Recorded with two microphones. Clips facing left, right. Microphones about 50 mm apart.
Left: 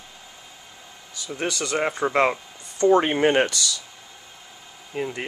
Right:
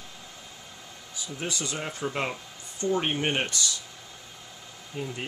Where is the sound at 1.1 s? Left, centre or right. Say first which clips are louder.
Left 6 dB; left.